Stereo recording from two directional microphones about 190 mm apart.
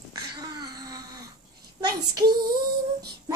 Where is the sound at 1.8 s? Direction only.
20° right (ahead or behind).